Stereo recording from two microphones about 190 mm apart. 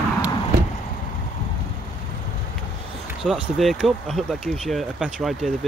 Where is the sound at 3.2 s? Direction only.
Centre (ahead or behind).